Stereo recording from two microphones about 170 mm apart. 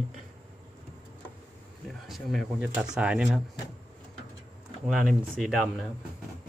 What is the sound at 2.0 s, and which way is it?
Speech, centre (ahead or behind).